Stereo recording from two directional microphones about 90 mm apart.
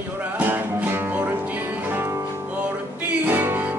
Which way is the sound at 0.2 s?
20° right (ahead or behind).